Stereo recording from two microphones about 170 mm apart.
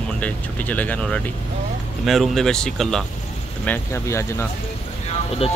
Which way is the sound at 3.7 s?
15° left (ahead or behind).